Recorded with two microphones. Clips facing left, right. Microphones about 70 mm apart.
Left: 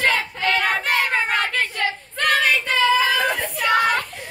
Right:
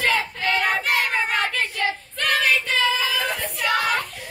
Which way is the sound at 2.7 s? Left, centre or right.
Centre.